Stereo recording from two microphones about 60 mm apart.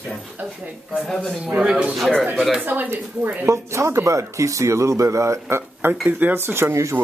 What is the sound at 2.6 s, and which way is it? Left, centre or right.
Speech, right.